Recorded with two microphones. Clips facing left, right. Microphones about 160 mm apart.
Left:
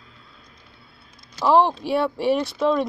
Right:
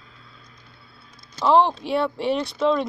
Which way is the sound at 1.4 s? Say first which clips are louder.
Even; 10° left (ahead or behind).